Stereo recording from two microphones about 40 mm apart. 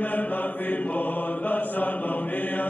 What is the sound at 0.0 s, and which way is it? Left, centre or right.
Mantra, left.